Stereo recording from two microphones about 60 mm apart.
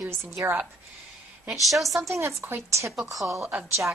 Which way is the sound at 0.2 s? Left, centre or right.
Right.